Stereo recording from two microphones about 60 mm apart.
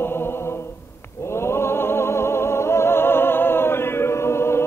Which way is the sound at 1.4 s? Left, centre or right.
Left.